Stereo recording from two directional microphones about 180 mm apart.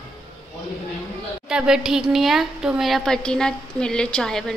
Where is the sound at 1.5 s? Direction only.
5° right (ahead or behind).